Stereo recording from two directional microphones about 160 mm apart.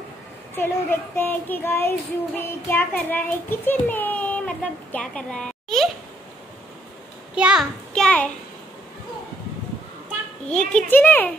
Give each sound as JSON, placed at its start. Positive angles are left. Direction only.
{"t": 0.6, "sound": "a child's voice", "side_deg": 15}
{"t": 7.3, "sound": "a child's voice", "side_deg": -5}
{"t": 7.9, "sound": "a sound", "side_deg": 5}
{"t": 10.5, "sound": "a child's voice", "side_deg": 5}